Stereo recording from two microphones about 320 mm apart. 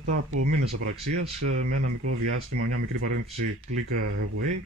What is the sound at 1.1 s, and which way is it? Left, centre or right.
Speech, right.